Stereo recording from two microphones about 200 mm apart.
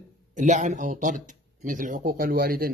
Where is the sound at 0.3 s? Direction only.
40° right (ahead or behind).